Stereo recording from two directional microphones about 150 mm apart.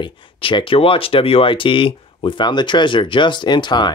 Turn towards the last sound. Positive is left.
turn(degrees=30)  # may be behind; listen again after turning